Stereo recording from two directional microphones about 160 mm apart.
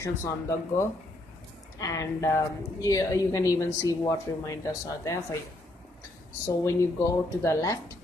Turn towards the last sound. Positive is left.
turn(degrees=20)  # may be behind; listen again after turning